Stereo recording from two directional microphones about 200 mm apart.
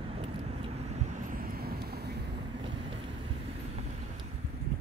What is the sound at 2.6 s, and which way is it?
Vehicle, 25° right (ahead or behind).